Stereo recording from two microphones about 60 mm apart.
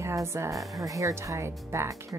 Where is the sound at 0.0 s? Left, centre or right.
Right.